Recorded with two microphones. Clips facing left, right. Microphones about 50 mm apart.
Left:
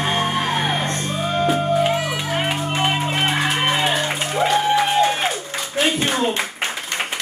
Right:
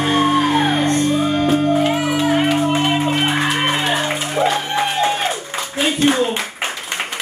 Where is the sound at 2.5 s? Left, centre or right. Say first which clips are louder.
Right 5 dB; centre.